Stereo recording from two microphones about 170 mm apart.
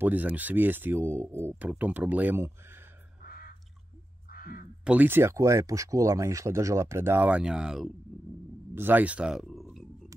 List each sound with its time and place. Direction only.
0.0 s speech: 10° right (ahead or behind)
3.3 s crow: 55° left (ahead or behind)
4.3 s a sound: 60° left (ahead or behind)
4.8 s speech: 10° right (ahead or behind)